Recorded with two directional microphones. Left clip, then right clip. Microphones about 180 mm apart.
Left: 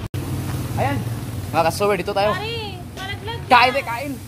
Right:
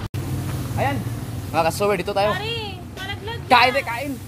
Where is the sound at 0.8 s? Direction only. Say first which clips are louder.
Even; centre (ahead or behind).